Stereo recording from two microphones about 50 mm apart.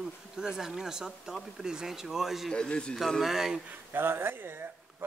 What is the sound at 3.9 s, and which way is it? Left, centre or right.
Speech, right.